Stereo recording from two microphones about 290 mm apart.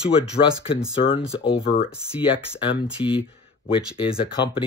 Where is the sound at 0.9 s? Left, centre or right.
Centre.